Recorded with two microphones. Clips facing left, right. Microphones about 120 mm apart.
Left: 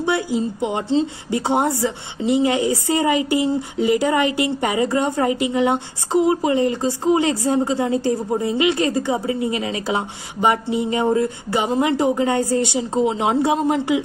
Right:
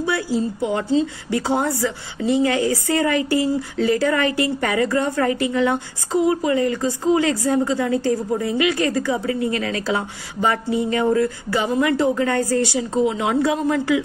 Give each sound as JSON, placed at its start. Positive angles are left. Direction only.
{"t": 0.0, "sound": "a woman's voice", "side_deg": 20}